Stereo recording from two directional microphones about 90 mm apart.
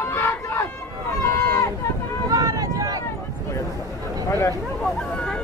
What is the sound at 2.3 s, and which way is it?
Run, 40° right (ahead or behind).